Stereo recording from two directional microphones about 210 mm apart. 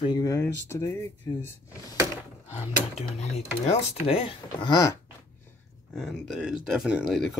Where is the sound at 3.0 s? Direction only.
30° left (ahead or behind).